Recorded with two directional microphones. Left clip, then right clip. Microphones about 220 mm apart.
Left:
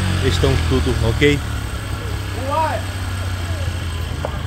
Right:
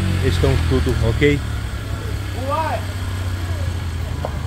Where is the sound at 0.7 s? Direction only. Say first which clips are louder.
Left 1 dB; 30° left (ahead or behind).